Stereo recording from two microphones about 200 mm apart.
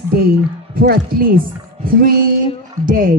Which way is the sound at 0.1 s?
50° right (ahead or behind).